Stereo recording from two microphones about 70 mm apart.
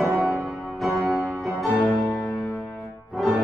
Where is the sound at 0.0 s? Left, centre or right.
Centre.